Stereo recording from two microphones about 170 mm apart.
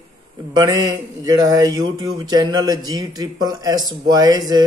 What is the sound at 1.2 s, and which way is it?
A man's voice, 20° right (ahead or behind).